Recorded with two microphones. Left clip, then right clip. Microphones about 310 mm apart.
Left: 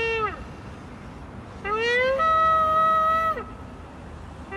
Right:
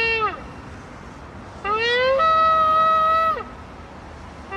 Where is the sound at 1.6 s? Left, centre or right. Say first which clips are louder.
Right 3 dB; centre.